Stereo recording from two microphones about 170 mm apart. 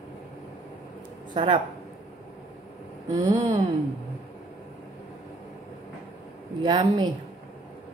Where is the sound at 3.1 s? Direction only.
25° right (ahead or behind).